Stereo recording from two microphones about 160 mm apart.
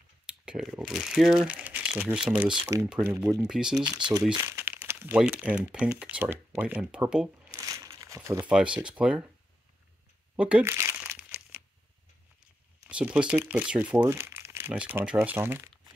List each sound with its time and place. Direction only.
0.5 s speech: 5° right (ahead or behind)
3.7 s speech: 25° right (ahead or behind); by 7.5 s 5° right (ahead or behind)
7.5 s crumpling: 20° right (ahead or behind)
8.5 s speech: 5° right (ahead or behind)
10.3 s speech: 5° right (ahead or behind)
11.2 s a sound: 15° right (ahead or behind)
12.8 s speech: 10° right (ahead or behind)